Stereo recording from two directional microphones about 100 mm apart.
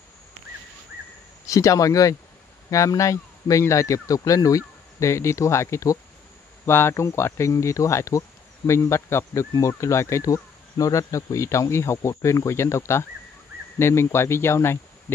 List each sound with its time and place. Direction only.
1.5 s speech: 35° left (ahead or behind)
6.6 s insect: 25° left (ahead or behind)
9.5 s speech: 30° left (ahead or behind)
13.7 s insect: 25° left (ahead or behind)